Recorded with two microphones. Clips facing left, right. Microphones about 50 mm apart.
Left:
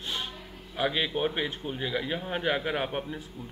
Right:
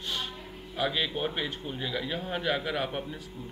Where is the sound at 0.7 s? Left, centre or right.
Centre.